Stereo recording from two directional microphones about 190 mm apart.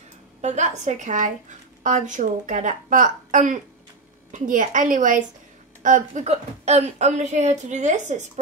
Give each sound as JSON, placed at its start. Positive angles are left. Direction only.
{"t": 0.4, "sound": "a woman's voice", "side_deg": -40}